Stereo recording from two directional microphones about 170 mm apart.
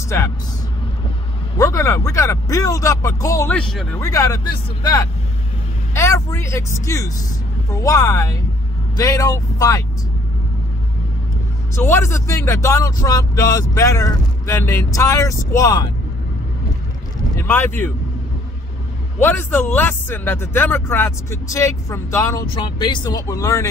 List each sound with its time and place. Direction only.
1.6 s speech: 15° left (ahead or behind)
3.5 s speech: 5° left (ahead or behind)
4.0 s speech: 20° left (ahead or behind)
11.7 s speech: 15° left (ahead or behind)
17.4 s speech: 10° left (ahead or behind)
19.1 s speech: 15° left (ahead or behind)